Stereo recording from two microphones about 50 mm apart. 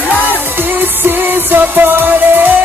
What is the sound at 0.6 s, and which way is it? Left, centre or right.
Music, right.